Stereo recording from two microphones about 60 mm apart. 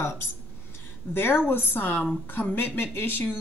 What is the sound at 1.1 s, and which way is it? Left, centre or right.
A woman's voice, left.